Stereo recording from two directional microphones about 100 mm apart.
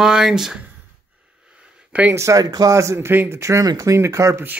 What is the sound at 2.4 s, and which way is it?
Speech, 40° right (ahead or behind).